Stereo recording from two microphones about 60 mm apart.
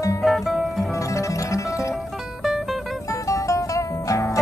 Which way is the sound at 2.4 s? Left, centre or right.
Centre.